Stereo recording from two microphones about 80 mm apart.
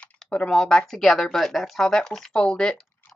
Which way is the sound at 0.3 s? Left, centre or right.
Centre.